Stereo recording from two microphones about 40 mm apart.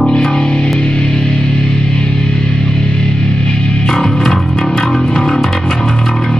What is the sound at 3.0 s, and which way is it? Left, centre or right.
Music, left.